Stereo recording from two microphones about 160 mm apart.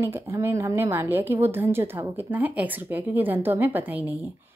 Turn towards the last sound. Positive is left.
turn(degrees=-10)  # may be behind; listen again after turning